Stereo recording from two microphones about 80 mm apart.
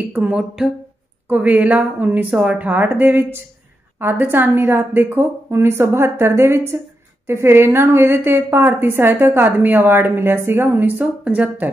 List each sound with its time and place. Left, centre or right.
0.1 s a woman's voice: centre